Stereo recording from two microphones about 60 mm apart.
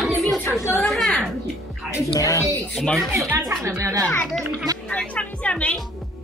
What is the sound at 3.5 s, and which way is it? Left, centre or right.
Speech, right.